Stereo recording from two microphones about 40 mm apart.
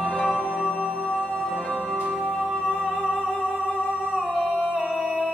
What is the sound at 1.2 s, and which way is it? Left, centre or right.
Music, right.